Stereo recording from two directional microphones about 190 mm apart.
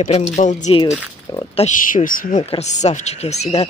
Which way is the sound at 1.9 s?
45° left (ahead or behind).